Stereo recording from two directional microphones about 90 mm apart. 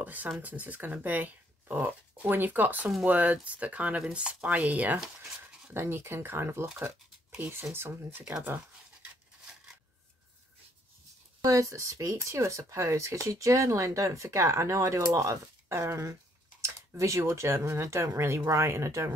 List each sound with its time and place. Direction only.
0.0 s speech: 20° right (ahead or behind)
11.4 s speech: 40° right (ahead or behind)